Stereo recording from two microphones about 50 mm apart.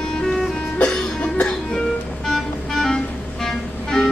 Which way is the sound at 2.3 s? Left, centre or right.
Centre.